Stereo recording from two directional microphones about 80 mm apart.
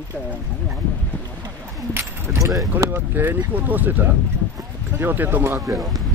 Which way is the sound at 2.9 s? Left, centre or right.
Right.